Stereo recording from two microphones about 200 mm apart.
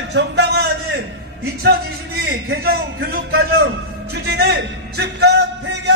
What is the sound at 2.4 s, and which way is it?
Speech, 50° right (ahead or behind).